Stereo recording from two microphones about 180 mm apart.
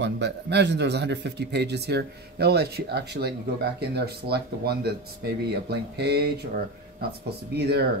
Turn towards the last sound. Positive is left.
turn(degrees=-65)  # may be behind; listen again after turning